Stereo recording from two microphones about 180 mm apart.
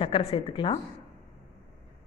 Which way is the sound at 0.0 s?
30° left (ahead or behind).